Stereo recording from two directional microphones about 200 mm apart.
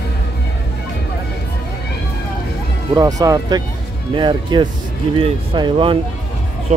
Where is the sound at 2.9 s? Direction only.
15° right (ahead or behind).